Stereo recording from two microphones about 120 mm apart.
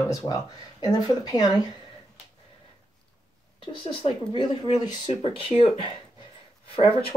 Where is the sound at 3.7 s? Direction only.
45° left (ahead or behind).